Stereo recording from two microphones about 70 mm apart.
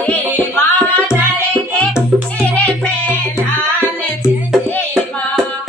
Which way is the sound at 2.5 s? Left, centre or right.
Left.